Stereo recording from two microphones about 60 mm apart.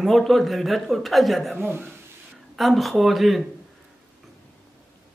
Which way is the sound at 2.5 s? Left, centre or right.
Centre.